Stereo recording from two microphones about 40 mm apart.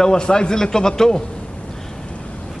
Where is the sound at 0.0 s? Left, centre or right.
Centre.